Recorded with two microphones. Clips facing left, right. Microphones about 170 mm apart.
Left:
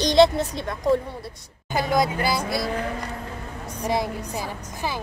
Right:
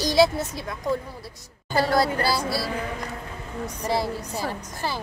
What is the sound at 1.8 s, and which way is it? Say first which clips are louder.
Speech: right 1 dB; 15° left (ahead or behind).